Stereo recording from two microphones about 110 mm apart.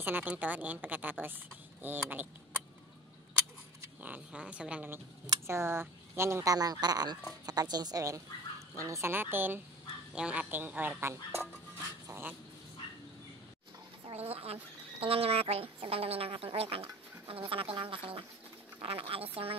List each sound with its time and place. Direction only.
0.0 s speech: 15° right (ahead or behind)
4.0 s speech: 10° right (ahead or behind)
5.2 s a woman's voice: 30° right (ahead or behind)
12.1 s duck: 20° right (ahead or behind)
14.1 s a woman's voice: 65° right (ahead or behind)